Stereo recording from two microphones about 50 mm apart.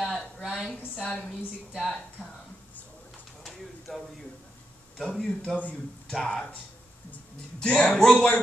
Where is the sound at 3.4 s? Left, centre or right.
Centre.